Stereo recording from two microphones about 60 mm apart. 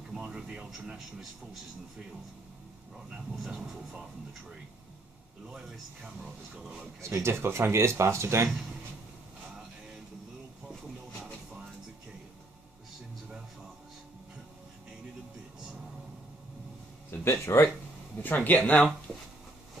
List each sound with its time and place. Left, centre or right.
0.1 s a sound: centre
3.1 s speech: centre
6.5 s speech: centre
7.2 s speech: right
17.1 s speech: left
18.2 s speech: left
19.1 s a sound: centre